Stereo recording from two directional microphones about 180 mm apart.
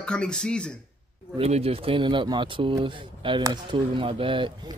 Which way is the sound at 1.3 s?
35° right (ahead or behind).